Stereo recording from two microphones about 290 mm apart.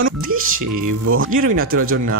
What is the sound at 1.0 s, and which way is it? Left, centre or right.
Speech, right.